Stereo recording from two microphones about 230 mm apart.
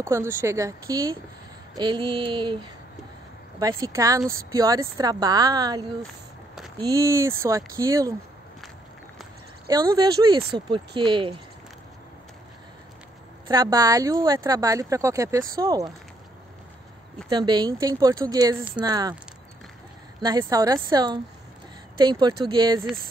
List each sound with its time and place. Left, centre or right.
0.0 s speech: centre
1.8 s a sound: centre
3.5 s speech: centre
9.7 s speech: centre
11.0 s a sound: right
13.5 s speech: centre
17.3 s speech: centre
20.2 s speech: centre
22.5 s a sound: centre